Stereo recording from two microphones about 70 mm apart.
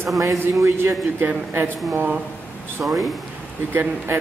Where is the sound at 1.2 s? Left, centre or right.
Right.